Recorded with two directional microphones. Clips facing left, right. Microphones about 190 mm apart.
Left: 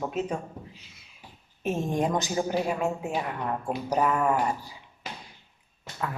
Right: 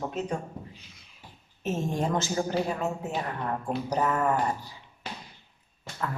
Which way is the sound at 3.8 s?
10° left (ahead or behind).